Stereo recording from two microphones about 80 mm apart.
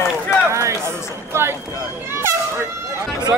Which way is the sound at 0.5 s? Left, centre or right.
Right.